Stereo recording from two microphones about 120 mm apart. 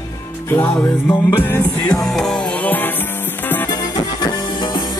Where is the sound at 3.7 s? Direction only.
35° left (ahead or behind).